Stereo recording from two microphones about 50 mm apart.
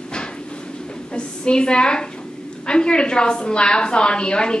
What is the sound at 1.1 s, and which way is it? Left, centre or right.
A woman's voice, centre.